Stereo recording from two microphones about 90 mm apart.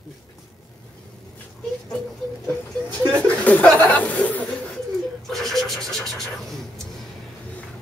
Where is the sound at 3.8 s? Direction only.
15° left (ahead or behind).